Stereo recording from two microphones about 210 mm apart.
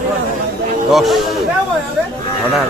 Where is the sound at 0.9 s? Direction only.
Centre (ahead or behind).